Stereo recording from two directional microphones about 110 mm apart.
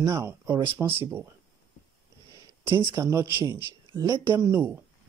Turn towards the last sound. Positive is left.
turn(degrees=-25)  # may be behind; listen again after turning